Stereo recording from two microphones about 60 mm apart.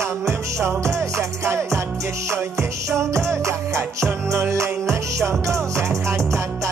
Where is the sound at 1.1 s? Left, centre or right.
Right.